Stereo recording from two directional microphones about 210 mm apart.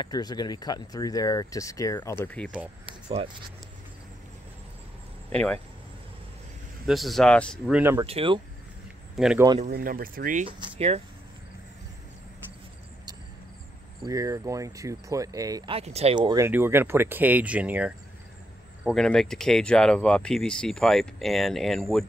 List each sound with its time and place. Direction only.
0.0 s speech: 20° left (ahead or behind)
2.2 s speech: 5° left (ahead or behind)
5.3 s speech: 5° left (ahead or behind)
6.9 s speech: centre (ahead or behind)
7.8 s speech: 15° right (ahead or behind)
8.1 s speech: 25° right (ahead or behind)
9.1 s speech: centre (ahead or behind)
9.7 s speech: 45° right (ahead or behind)
14.0 s speech: 15° right (ahead or behind); by 22.0 s centre (ahead or behind)